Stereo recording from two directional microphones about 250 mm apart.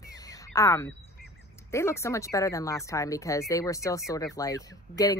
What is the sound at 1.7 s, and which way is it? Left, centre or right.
Speech, centre.